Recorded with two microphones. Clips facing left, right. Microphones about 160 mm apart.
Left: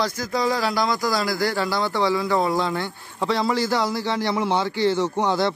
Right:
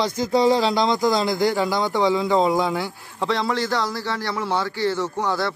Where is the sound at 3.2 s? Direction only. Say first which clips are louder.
Left 1 dB; centre (ahead or behind); by 5.5 s 20° left (ahead or behind).